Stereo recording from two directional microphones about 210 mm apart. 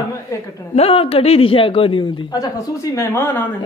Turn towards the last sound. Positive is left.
turn(degrees=10)  # may be behind; listen again after turning